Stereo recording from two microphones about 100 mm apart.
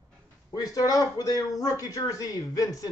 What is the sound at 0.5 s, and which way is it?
Speech, 35° left (ahead or behind).